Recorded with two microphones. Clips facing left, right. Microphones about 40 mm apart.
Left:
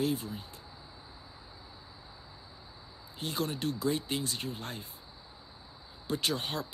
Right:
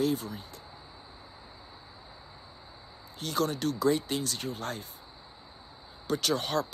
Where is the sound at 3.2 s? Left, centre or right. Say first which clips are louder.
Right 4 dB; centre.